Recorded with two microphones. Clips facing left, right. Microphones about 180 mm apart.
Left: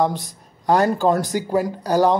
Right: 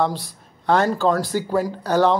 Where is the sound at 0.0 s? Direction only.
15° left (ahead or behind).